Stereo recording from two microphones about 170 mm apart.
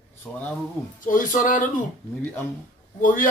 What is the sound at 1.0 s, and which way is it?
Speech, 50° left (ahead or behind).